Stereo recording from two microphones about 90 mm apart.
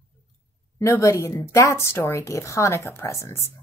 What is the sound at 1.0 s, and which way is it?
Speech, 30° left (ahead or behind).